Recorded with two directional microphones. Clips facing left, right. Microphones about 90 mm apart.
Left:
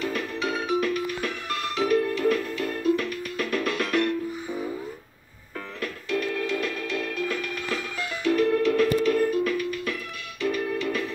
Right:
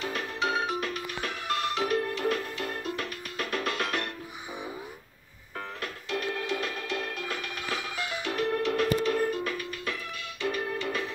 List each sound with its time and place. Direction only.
0.0 s music: 30° right (ahead or behind)
5.8 s music: 30° right (ahead or behind)